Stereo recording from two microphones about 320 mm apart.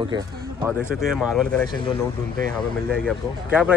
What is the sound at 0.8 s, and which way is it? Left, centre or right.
Speech, centre.